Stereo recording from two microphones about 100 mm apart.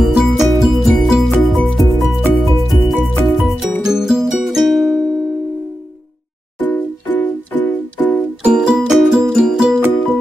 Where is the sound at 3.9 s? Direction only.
5° right (ahead or behind).